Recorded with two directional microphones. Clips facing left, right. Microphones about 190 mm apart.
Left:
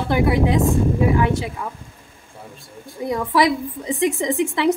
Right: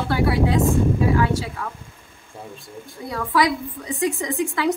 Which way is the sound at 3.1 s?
20° left (ahead or behind).